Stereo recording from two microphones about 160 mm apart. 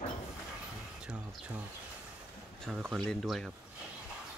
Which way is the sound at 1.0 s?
10° right (ahead or behind).